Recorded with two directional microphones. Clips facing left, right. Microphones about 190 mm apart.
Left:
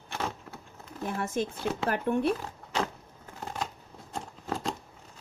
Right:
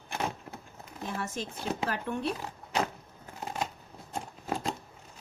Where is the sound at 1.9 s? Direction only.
55° left (ahead or behind).